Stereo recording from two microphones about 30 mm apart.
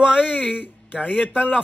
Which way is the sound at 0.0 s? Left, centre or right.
Right.